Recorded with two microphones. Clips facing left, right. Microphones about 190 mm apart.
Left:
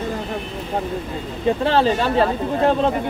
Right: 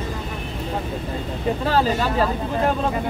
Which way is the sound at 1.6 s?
25° left (ahead or behind).